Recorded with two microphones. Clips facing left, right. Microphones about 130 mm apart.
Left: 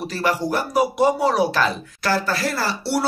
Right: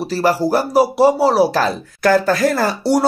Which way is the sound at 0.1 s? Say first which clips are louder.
Right 7 dB; 35° right (ahead or behind).